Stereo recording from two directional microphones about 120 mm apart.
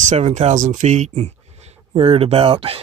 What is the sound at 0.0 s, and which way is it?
Speech, 80° right.